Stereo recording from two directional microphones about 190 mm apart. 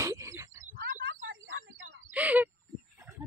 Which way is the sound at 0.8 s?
50° right (ahead or behind).